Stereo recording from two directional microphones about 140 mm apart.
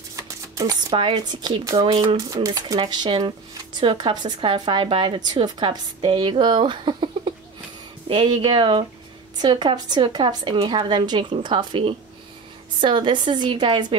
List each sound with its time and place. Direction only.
0.1 s music: 25° right (ahead or behind)
0.9 s speech: 35° right (ahead or behind)